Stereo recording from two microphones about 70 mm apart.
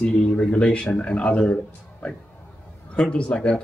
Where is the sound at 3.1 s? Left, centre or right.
Centre.